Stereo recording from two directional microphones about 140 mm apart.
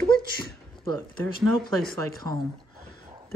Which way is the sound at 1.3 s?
90° left.